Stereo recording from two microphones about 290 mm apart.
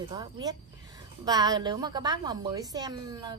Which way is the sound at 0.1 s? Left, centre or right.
Centre.